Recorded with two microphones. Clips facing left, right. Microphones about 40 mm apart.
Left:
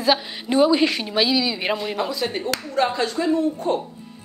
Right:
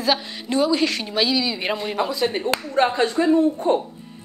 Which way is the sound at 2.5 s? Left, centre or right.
Right.